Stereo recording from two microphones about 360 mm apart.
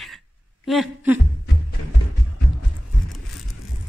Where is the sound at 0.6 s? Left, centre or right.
Centre.